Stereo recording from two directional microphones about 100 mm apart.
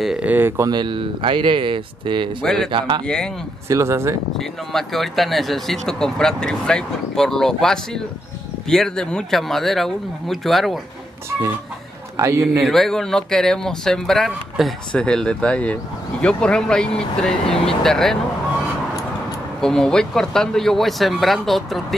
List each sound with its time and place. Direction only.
0.0 s speech: 5° right (ahead or behind)
0.3 s speech: 25° right (ahead or behind)
0.7 s speech: 50° right (ahead or behind)
2.4 s speech: 5° left (ahead or behind)
3.6 s speech: 30° right (ahead or behind)
4.4 s speech: 5° left (ahead or behind)
12.2 s speech: 30° right (ahead or behind)
12.6 s speech: 5° left (ahead or behind)
19.6 s speech: 5° left (ahead or behind)